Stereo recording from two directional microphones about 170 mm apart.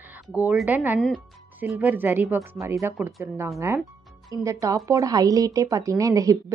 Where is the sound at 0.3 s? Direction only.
10° right (ahead or behind).